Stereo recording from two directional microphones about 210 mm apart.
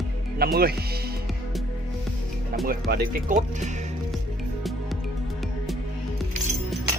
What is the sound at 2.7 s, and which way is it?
Speech, 45° right (ahead or behind).